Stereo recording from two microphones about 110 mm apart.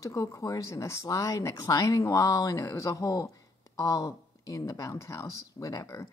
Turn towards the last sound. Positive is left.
turn(degrees=25)  # may be behind; listen again after turning